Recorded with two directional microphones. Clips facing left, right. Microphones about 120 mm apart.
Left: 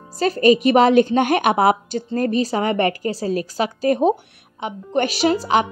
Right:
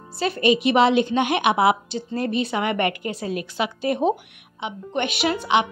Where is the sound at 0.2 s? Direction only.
45° left (ahead or behind).